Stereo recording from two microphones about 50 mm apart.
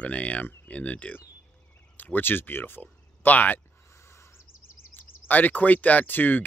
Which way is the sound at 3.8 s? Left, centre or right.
Left.